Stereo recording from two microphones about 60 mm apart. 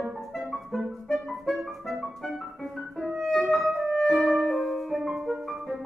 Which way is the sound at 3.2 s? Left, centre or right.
Centre.